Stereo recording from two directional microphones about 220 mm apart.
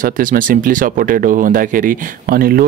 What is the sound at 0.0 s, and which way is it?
Speech, 40° right (ahead or behind).